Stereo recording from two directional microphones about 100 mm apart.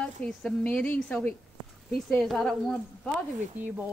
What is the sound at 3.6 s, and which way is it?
Speech, 15° right (ahead or behind).